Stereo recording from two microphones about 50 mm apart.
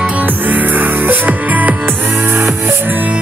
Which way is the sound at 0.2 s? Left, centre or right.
Right.